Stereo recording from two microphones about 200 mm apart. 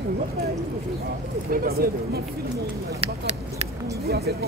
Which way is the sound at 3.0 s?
30° right (ahead or behind).